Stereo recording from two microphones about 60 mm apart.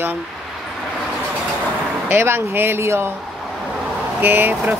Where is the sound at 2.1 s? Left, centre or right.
Right.